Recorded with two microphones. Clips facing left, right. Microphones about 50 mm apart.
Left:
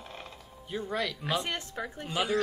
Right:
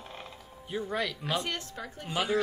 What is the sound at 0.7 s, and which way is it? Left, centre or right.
Speech, centre.